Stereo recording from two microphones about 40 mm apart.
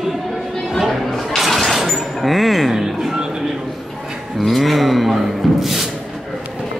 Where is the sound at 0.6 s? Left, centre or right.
Centre.